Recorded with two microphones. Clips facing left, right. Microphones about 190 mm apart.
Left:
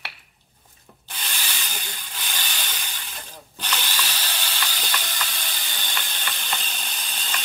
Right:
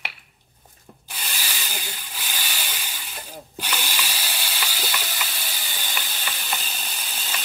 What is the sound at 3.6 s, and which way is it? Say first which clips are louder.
Ratchet: even; 10° right (ahead or behind).